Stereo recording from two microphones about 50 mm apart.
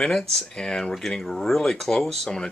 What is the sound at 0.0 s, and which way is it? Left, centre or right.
Speech, centre.